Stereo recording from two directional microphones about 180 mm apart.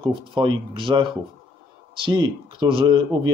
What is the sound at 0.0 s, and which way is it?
Speech, 25° right (ahead or behind).